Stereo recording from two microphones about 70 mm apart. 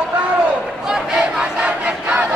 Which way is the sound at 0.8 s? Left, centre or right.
Centre.